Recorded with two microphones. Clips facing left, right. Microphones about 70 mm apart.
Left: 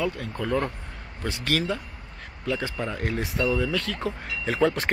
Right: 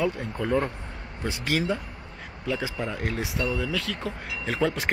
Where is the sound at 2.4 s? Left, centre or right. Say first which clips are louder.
Left 1 dB; centre.